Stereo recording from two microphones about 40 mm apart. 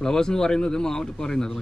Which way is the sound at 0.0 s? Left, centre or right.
Centre.